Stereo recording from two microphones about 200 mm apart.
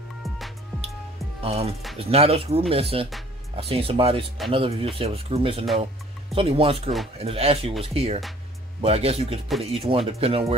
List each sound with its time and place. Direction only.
1.4 s speech: 30° right (ahead or behind)